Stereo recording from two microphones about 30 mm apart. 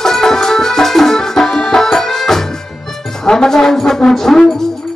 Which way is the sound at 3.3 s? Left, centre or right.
Left.